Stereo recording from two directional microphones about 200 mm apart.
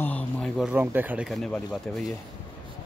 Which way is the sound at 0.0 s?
5° left (ahead or behind).